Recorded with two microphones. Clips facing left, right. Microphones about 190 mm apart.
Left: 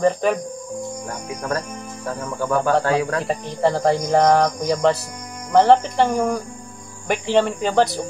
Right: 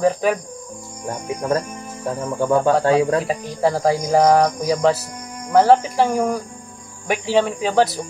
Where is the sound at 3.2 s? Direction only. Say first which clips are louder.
Even; 5° right (ahead or behind).